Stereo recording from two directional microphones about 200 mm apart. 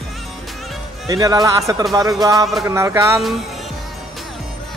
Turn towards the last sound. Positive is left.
turn(degrees=-15)  # may be behind; listen again after turning